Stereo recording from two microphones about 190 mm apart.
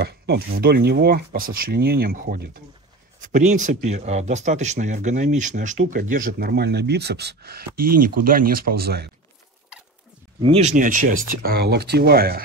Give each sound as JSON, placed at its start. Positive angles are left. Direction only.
{"t": 0.0, "sound": "speech", "side_deg": -60}
{"t": 10.4, "sound": "speech", "side_deg": -35}